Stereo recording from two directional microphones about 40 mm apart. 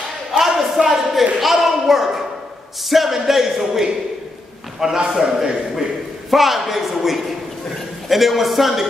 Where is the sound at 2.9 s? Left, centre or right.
Centre.